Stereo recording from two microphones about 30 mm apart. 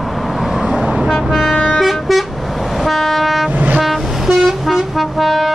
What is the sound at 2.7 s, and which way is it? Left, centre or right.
Train, centre.